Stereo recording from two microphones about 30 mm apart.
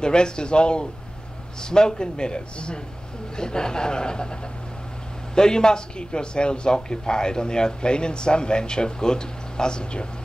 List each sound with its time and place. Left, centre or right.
0.0 s speech: left
5.3 s speech: left